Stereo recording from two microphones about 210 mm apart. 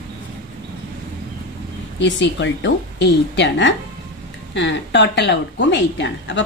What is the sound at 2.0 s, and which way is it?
A woman's voice, 60° left (ahead or behind).